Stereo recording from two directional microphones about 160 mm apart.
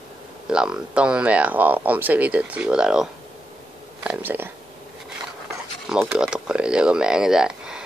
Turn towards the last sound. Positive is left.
turn(degrees=-5)  # may be behind; listen again after turning